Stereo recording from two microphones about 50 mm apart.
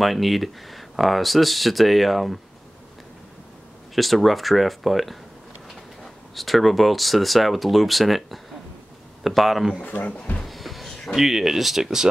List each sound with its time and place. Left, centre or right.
0.0 s speech: centre
3.9 s speech: centre
6.3 s speech: centre
9.8 s a man's voice: left
10.4 s a sound: centre
11.1 s speech: centre